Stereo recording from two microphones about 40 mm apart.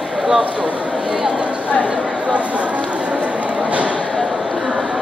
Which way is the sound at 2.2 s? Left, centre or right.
Right.